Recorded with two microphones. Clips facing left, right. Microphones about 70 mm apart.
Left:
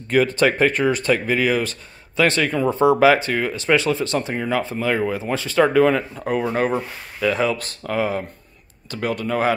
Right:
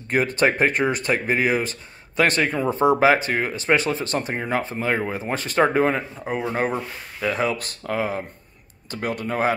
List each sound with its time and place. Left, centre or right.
0.4 s speech: right
6.2 s speech: centre
7.2 s speech: right
9.2 s speech: right